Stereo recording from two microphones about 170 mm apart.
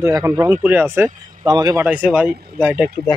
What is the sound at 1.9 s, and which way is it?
Speech, 10° right (ahead or behind).